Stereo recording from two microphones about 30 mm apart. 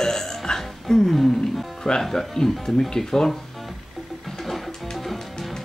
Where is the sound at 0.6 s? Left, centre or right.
Centre.